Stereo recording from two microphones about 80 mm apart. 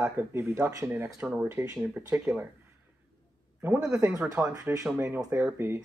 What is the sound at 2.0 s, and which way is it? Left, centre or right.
Speech, right.